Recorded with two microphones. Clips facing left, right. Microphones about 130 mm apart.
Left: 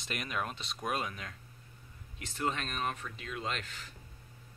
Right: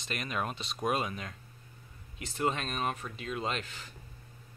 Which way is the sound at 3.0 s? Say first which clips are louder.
Right 4 dB; 30° right (ahead or behind).